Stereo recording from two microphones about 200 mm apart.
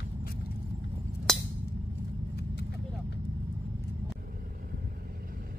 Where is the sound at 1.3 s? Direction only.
Centre (ahead or behind).